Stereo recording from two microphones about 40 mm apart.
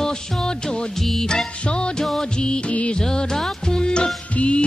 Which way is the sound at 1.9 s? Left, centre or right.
Centre.